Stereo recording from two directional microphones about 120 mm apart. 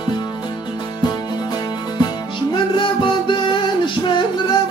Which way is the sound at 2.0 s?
40° left (ahead or behind).